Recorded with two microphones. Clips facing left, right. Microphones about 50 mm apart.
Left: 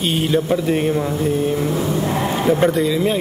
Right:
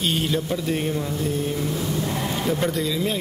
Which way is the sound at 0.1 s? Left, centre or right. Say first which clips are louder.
Left 6 dB; centre.